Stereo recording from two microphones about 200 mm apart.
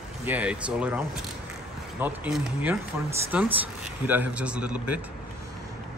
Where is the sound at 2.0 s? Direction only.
10° right (ahead or behind).